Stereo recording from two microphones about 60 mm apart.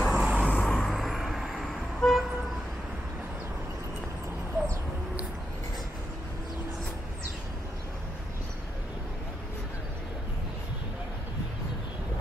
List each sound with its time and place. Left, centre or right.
0.0 s vehicle: centre
0.5 s vehicle: left
0.8 s vehicle: centre